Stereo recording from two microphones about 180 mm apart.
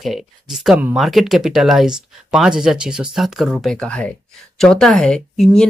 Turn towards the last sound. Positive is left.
turn(degrees=5)  # may be behind; listen again after turning